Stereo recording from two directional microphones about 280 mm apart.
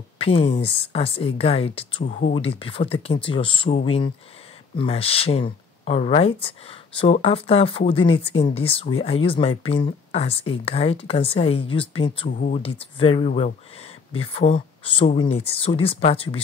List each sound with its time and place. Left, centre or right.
0.2 s speech: left